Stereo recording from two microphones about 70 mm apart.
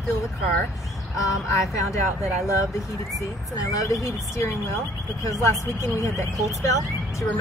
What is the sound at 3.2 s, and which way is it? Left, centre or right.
Speech, left.